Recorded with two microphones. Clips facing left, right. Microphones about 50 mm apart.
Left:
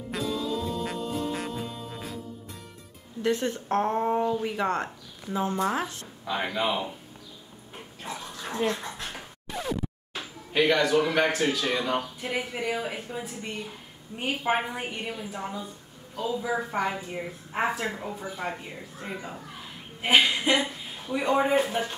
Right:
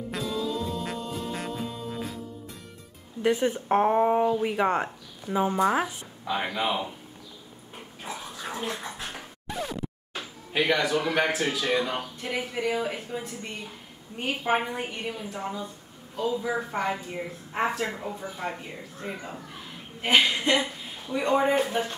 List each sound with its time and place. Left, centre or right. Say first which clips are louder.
0.1 s music: left 1 dB; centre
3.2 s a woman's voice: right 2 dB; centre
8.0 s dog: even; centre
10.5 s a woman's voice: left 2 dB; centre
12.2 s a woman's voice: right 1 dB; centre